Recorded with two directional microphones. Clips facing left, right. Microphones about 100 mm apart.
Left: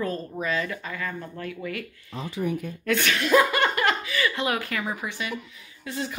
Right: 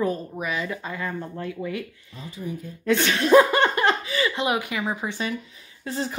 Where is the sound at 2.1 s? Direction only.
80° left.